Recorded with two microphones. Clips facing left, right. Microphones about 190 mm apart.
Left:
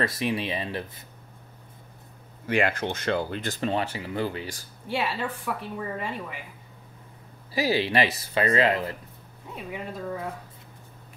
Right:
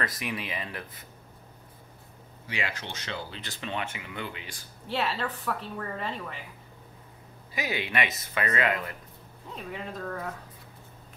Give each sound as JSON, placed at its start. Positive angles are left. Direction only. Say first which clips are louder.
{"t": 0.0, "sound": "speech", "louder": "left 7 dB", "side_deg": 30}
{"t": 2.4, "sound": "speech", "louder": "left 11 dB", "side_deg": 50}
{"t": 4.8, "sound": "a woman's voice", "louder": "left 2 dB", "side_deg": 10}
{"t": 7.5, "sound": "speech", "louder": "left 7 dB", "side_deg": 30}
{"t": 9.6, "sound": "a woman's voice", "louder": "left 2 dB", "side_deg": 10}